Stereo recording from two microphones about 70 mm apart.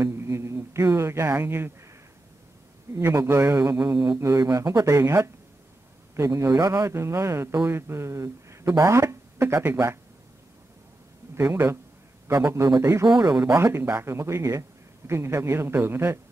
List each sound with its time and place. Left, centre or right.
0.0 s music: right
3.2 s speech: right
4.2 s speech: right
11.3 s speech: right
13.0 s speech: right
13.5 s speech: right